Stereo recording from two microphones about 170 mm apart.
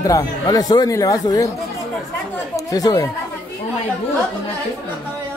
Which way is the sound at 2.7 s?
20° left (ahead or behind).